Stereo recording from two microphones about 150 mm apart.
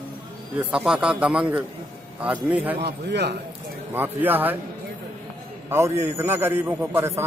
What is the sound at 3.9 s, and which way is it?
Speech, 10° right (ahead or behind).